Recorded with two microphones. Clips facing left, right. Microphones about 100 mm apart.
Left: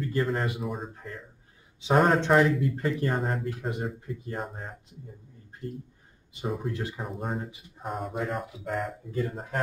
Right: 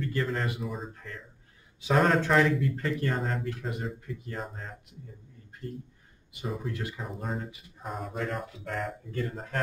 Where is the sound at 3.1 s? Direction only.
5° left (ahead or behind).